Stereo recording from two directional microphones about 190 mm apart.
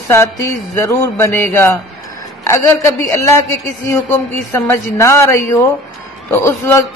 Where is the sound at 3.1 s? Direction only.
15° left (ahead or behind).